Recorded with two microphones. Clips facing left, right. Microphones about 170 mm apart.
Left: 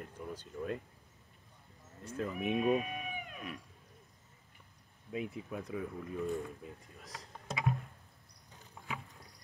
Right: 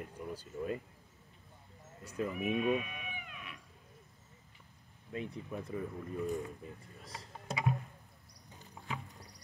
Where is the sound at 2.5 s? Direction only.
35° left (ahead or behind).